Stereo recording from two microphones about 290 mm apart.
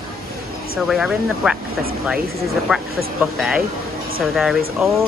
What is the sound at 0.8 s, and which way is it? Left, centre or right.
Speech, centre.